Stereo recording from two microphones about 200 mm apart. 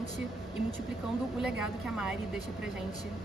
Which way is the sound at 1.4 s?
5° right (ahead or behind).